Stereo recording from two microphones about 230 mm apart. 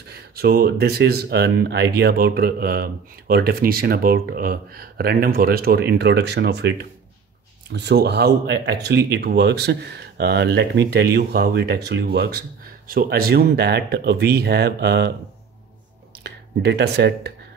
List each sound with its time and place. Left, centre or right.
0.1 s speech: right
16.3 s speech: right